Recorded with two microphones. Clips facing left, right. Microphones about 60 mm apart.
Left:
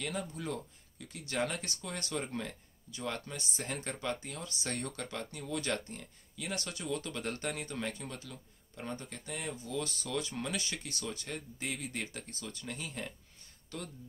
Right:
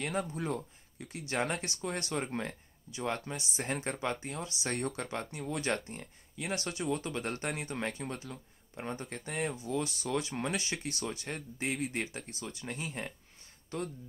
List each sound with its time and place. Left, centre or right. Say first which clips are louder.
0.0 s speech: right 4 dB; right
11.1 s speech: right 2 dB; right